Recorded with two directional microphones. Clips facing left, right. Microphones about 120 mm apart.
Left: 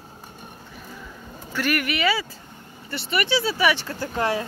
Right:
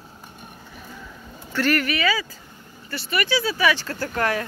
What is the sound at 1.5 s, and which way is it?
Speech, 10° left (ahead or behind).